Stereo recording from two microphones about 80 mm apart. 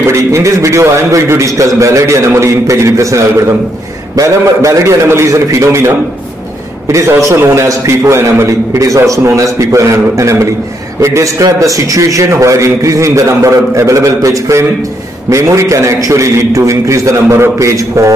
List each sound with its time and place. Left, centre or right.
0.0 s a man's voice: right